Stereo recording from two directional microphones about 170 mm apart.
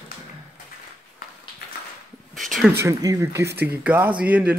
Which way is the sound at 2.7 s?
15° right (ahead or behind).